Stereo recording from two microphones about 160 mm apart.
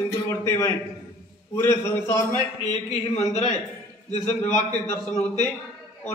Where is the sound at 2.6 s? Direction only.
45° left (ahead or behind).